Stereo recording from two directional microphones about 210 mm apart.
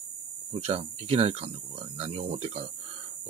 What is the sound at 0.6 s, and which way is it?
Speech, 30° right (ahead or behind).